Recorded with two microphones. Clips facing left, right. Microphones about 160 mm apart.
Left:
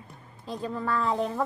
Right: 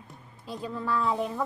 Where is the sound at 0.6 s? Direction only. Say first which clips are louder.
Left 1 dB; 50° left (ahead or behind).